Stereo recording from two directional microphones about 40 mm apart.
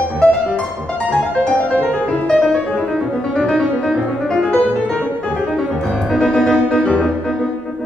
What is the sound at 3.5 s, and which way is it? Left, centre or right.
Music, centre.